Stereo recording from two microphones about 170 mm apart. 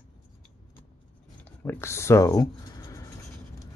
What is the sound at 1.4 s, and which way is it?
Speech, 15° left (ahead or behind).